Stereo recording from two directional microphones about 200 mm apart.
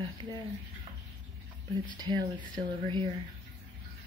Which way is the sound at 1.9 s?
20° right (ahead or behind).